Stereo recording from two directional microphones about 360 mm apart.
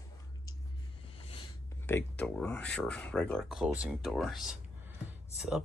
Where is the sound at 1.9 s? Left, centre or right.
Centre.